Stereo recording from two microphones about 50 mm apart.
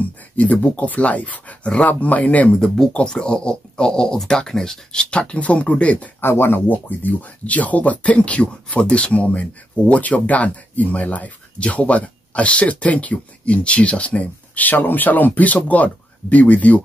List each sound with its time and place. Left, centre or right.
0.0 s speech: left
2.6 s speech: centre; by 6.0 s left
6.2 s speech: left
6.7 s speech: left